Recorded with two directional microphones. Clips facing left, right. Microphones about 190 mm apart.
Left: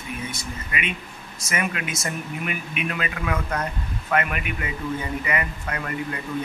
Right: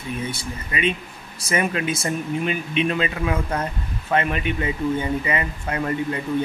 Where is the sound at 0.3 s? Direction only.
30° right (ahead or behind).